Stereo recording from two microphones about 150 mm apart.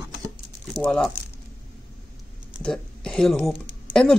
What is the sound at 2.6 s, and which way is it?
Speech, 5° left (ahead or behind).